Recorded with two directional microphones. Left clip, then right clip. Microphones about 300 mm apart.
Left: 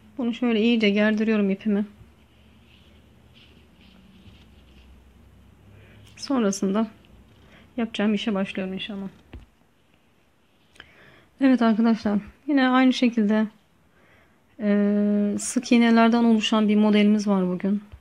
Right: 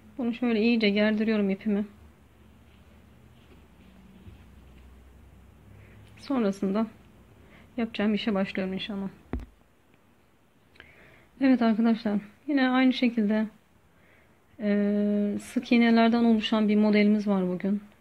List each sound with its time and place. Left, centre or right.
0.2 s speech: centre
6.1 s a woman's voice: centre
10.8 s a woman's voice: centre
14.6 s speech: centre